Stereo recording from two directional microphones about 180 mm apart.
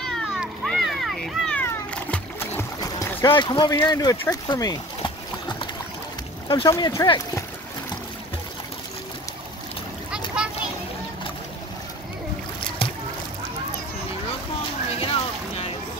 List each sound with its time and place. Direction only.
0.0 s a sound: centre (ahead or behind); by 5.7 s 25° left (ahead or behind)
6.5 s speech: 20° left (ahead or behind)
10.1 s splash: 5° right (ahead or behind)
12.6 s boat: 30° left (ahead or behind)
14.9 s boat: 35° left (ahead or behind)